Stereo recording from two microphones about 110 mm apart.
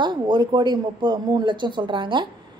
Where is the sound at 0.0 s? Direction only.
45° right (ahead or behind).